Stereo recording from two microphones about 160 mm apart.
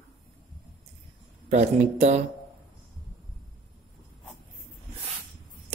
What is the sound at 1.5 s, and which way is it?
Speech, 45° right (ahead or behind).